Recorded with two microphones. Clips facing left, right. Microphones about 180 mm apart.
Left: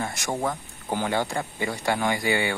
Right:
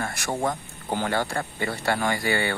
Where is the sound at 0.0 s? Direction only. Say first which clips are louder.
Even; 20° left (ahead or behind).